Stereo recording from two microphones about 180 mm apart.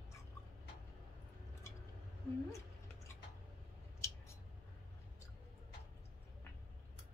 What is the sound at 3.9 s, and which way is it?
Scissors, 15° left (ahead or behind).